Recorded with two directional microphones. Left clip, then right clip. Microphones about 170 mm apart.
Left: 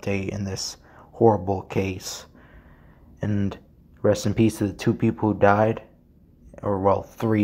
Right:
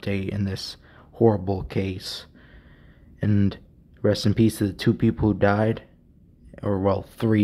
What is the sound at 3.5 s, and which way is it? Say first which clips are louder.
Speech: right 2 dB; 20° right (ahead or behind).